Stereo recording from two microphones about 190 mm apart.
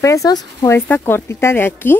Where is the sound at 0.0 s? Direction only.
15° left (ahead or behind).